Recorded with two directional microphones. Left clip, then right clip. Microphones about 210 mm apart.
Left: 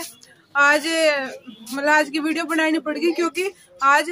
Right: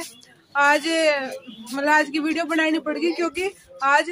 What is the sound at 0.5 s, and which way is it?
Speech, 10° left (ahead or behind).